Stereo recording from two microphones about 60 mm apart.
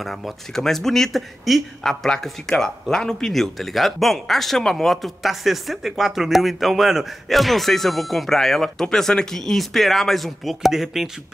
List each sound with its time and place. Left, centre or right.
0.0 s speech: centre